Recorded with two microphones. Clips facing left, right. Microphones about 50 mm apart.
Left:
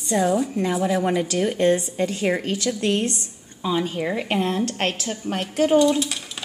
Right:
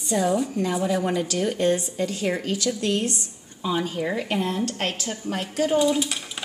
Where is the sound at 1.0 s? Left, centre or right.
Left.